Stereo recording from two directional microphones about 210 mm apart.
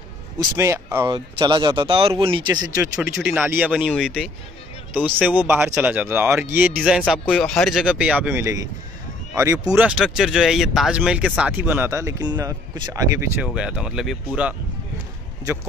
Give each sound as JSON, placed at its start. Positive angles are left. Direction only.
{"t": 0.4, "sound": "speech", "side_deg": -15}
{"t": 13.4, "sound": "speech", "side_deg": -5}